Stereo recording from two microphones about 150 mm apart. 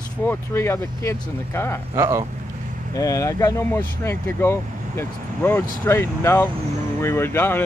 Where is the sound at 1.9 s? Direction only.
20° right (ahead or behind).